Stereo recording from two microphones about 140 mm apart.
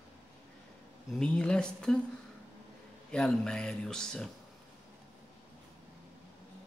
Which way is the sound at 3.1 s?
5° left (ahead or behind).